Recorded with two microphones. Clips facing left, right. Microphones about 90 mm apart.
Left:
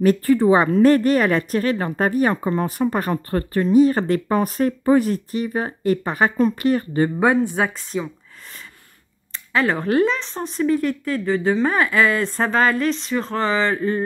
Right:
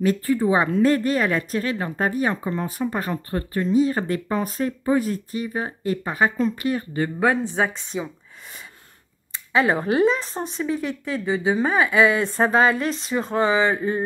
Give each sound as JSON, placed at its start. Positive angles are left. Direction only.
{"t": 0.0, "sound": "speech", "side_deg": 60}
{"t": 7.2, "sound": "speech", "side_deg": 15}
{"t": 7.5, "sound": "speech", "side_deg": 0}
{"t": 9.3, "sound": "speech", "side_deg": -5}